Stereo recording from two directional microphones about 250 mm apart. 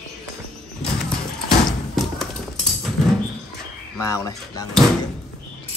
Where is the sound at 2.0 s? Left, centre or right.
Centre.